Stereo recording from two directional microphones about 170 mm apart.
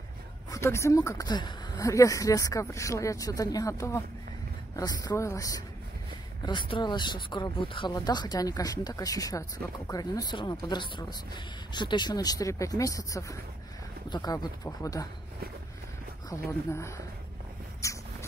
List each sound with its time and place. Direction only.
0.5 s speech: 15° left (ahead or behind)
16.3 s speech: 15° left (ahead or behind)
17.8 s rodents: 20° left (ahead or behind)